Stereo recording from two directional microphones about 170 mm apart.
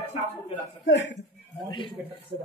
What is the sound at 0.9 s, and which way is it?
Speech, 90° left.